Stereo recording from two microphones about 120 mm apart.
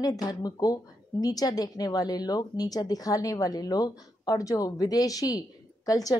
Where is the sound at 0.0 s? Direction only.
30° left (ahead or behind).